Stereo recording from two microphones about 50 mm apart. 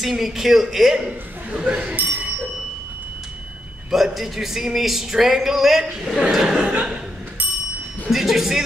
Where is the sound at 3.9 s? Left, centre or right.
Centre.